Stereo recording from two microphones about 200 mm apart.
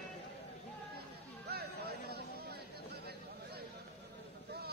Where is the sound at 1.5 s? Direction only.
55° right (ahead or behind).